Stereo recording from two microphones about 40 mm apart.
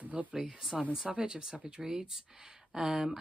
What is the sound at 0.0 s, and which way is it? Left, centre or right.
Speech, right.